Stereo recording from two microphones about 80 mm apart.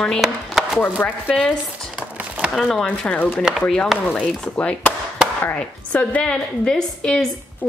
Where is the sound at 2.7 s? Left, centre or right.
Centre.